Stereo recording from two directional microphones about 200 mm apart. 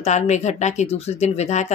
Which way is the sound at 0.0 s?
35° left (ahead or behind).